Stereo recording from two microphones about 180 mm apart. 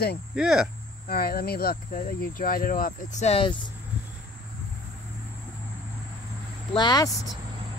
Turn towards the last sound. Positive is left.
turn(degrees=20)  # may be behind; listen again after turning